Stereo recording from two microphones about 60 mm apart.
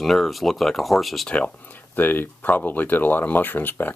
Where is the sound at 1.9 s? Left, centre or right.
Left.